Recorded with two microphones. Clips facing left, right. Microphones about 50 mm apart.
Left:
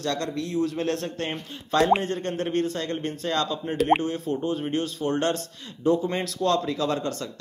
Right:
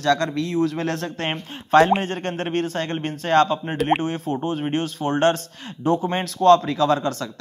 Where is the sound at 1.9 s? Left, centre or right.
Right.